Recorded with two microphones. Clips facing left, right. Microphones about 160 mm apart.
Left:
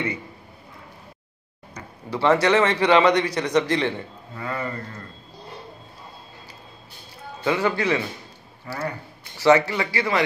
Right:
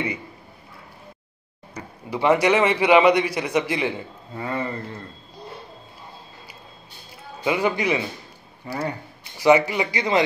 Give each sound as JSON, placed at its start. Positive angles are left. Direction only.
{"t": 1.7, "sound": "speech", "side_deg": -10}
{"t": 4.4, "sound": "a man's voice", "side_deg": -30}
{"t": 7.3, "sound": "speech", "side_deg": -15}